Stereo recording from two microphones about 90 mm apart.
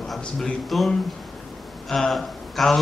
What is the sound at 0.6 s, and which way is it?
Speech, centre (ahead or behind).